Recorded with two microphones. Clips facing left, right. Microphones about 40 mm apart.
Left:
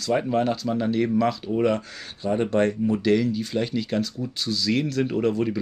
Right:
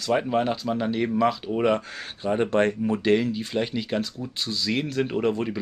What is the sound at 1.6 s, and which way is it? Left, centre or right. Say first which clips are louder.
Speech: right 1 dB; right.